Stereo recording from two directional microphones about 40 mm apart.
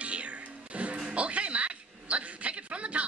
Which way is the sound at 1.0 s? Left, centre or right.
Right.